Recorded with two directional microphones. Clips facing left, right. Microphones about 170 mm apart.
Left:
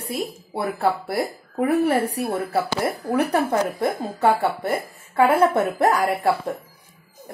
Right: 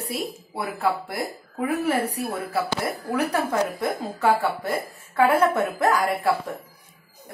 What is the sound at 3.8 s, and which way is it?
Speech, 25° left (ahead or behind).